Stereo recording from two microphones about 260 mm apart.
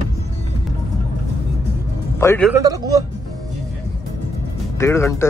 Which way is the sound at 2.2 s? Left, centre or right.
Centre.